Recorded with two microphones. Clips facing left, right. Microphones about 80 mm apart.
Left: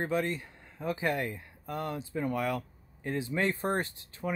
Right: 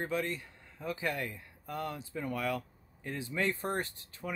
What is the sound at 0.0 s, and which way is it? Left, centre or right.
Speech, left.